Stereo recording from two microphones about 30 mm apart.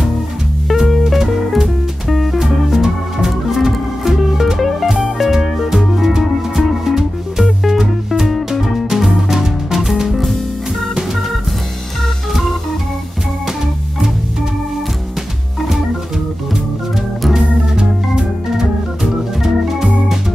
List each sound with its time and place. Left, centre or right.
0.7 s music: centre
8.8 s music: centre
17.4 s organ: right
18.6 s organ: centre